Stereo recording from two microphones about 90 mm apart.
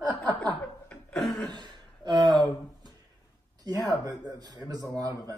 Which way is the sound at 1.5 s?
55° right (ahead or behind).